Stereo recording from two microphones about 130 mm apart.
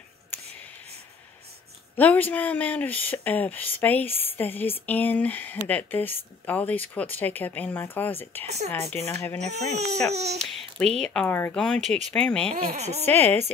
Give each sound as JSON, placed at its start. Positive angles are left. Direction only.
{"t": 2.0, "sound": "speech", "side_deg": 15}
{"t": 8.5, "sound": "speech", "side_deg": -55}
{"t": 9.1, "sound": "speech", "side_deg": 25}
{"t": 9.4, "sound": "speech", "side_deg": -60}
{"t": 10.4, "sound": "speech", "side_deg": 5}
{"t": 11.2, "sound": "speech", "side_deg": 15}
{"t": 11.5, "sound": "speech", "side_deg": 5}
{"t": 12.4, "sound": "speech", "side_deg": -55}
{"t": 13.1, "sound": "speech", "side_deg": 15}